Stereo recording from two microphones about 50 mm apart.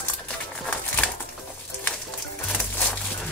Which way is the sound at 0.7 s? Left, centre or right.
Left.